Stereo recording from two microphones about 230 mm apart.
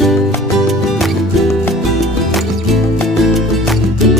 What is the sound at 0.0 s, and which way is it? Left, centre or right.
Music, centre.